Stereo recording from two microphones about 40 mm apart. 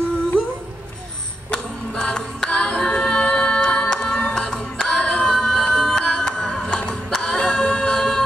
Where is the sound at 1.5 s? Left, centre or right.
Centre.